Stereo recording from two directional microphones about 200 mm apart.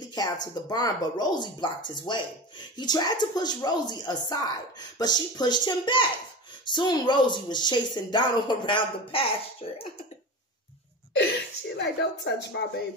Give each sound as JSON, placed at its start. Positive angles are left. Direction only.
{"t": 0.1, "sound": "speech", "side_deg": 20}
{"t": 11.7, "sound": "speech", "side_deg": 55}